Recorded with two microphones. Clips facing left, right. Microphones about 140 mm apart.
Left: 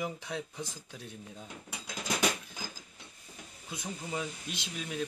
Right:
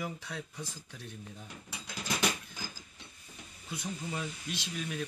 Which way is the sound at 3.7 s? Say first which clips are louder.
Even; 15° left (ahead or behind).